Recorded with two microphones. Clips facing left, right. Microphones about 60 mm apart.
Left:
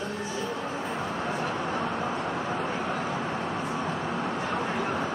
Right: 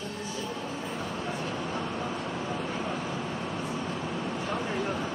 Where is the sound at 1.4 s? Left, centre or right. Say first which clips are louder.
Left 4 dB; left.